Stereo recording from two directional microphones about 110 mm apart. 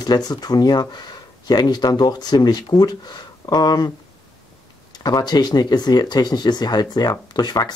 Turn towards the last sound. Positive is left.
turn(degrees=40)  # may be behind; listen again after turning